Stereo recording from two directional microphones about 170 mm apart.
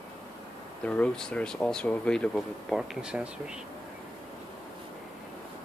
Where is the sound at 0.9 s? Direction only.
5° left (ahead or behind).